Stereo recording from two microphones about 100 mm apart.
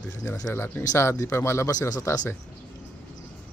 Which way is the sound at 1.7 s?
35° left (ahead or behind).